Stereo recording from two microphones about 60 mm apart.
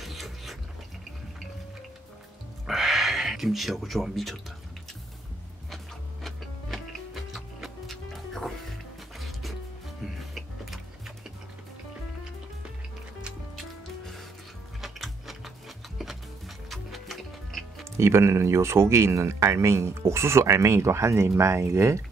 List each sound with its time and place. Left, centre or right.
0.0 s a sound: centre
2.6 s a sound: centre
6.2 s music: centre
13.6 s music: centre
14.8 s gears: centre
16.0 s music: centre
17.9 s speech: right